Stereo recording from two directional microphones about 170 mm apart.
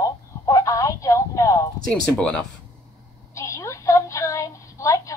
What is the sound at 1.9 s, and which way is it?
Speech, 5° left (ahead or behind).